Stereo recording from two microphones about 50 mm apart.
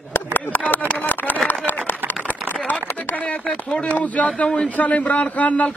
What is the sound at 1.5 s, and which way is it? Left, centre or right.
Run, left.